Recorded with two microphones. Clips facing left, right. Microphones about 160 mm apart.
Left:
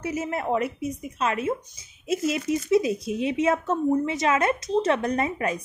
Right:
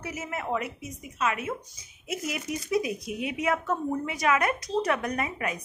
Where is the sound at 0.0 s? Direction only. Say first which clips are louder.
Left 7 dB; 30° left (ahead or behind).